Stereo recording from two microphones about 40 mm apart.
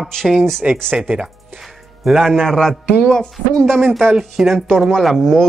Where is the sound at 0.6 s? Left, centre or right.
Right.